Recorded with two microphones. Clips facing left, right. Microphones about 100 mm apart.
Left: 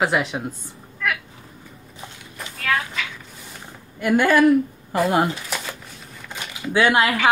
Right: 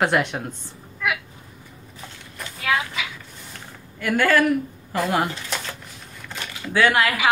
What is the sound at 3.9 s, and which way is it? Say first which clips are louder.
A woman's voice: left 2 dB; 20° left (ahead or behind).